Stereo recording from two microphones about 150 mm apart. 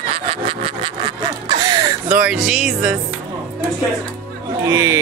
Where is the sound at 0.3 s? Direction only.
40° right (ahead or behind).